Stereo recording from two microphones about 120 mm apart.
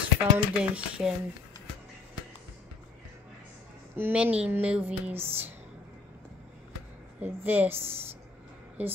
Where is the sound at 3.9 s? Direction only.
15° right (ahead or behind).